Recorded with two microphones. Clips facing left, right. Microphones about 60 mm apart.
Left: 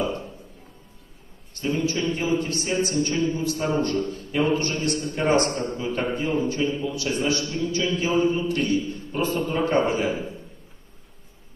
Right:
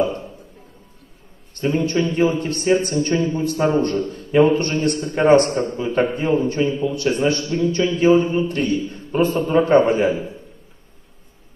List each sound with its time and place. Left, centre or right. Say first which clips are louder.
1.6 s a man's voice: right 5 dB; right